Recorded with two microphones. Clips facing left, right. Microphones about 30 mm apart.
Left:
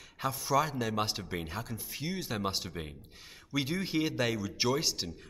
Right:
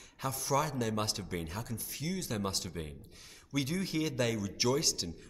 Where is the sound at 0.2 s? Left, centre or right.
Centre.